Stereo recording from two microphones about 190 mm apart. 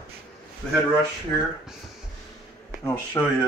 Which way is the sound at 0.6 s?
5° left (ahead or behind).